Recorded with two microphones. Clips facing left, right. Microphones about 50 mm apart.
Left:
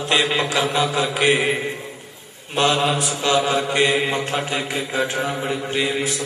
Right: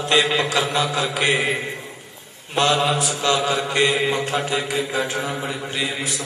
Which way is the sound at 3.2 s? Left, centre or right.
Left.